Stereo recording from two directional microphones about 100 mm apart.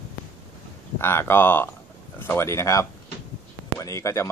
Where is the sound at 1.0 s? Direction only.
25° left (ahead or behind).